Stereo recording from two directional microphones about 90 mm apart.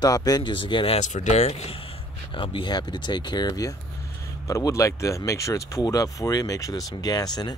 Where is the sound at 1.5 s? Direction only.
90° left; by 2.7 s 70° left (ahead or behind).